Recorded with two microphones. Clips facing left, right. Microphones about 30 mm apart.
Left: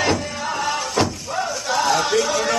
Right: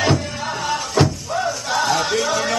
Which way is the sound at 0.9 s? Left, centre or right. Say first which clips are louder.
Right 2 dB; centre.